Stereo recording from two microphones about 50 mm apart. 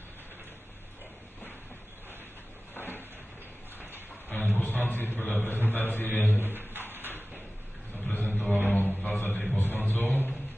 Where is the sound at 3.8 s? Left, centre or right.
Right.